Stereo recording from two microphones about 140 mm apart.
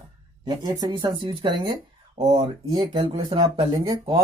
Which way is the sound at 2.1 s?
50° right (ahead or behind).